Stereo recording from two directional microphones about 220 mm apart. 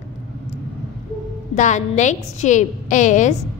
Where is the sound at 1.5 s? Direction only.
35° left (ahead or behind).